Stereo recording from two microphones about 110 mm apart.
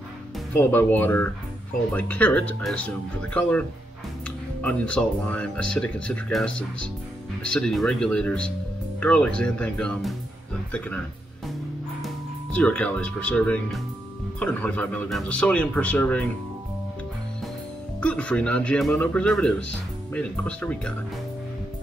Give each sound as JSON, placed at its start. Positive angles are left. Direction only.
{"t": 0.6, "sound": "speech", "side_deg": 20}
{"t": 12.5, "sound": "speech", "side_deg": 10}
{"t": 18.0, "sound": "speech", "side_deg": 10}